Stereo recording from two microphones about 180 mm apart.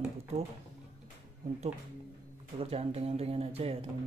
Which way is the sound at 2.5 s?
35° right (ahead or behind).